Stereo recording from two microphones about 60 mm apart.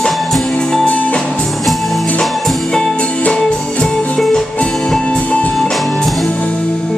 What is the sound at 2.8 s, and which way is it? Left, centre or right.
Music, centre.